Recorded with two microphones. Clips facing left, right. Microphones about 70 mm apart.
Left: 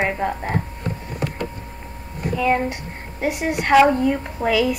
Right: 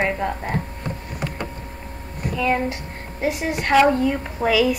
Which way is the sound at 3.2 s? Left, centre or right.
Left.